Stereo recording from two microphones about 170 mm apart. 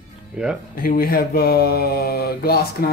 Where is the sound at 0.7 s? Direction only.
55° left (ahead or behind).